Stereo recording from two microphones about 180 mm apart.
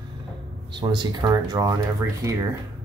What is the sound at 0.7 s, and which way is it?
Speech, 25° right (ahead or behind).